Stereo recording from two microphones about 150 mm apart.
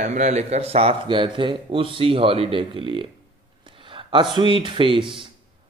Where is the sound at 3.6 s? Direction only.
35° right (ahead or behind).